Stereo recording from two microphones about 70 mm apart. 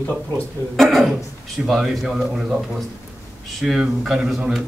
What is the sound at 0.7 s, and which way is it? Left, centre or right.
Speech, centre.